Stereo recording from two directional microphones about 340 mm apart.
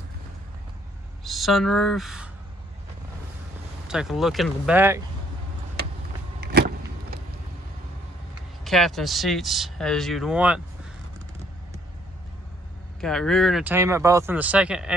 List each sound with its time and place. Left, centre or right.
1.2 s speech: centre
3.8 s speech: centre
6.4 s vehicle: right
8.6 s speech: centre
13.0 s speech: centre